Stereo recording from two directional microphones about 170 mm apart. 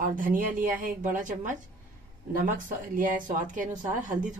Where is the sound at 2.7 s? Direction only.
50° right (ahead or behind).